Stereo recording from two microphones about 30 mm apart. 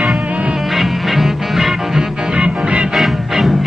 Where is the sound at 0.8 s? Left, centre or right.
Centre.